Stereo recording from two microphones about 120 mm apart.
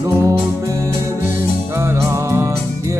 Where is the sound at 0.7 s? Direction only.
25° right (ahead or behind).